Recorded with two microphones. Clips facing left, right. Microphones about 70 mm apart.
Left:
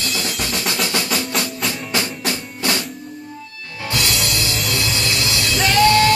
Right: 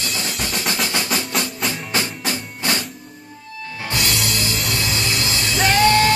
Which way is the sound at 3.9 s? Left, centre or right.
Centre.